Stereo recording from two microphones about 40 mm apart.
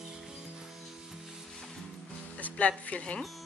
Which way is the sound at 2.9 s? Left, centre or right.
Left.